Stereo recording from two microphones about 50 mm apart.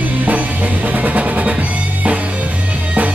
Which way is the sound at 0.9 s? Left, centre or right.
Right.